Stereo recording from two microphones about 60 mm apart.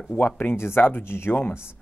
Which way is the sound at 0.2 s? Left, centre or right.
Left.